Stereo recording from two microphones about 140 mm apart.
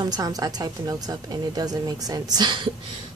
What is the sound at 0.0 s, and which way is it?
A woman's voice, 25° right (ahead or behind).